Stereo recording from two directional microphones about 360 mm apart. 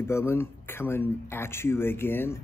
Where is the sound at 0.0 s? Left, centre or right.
Centre.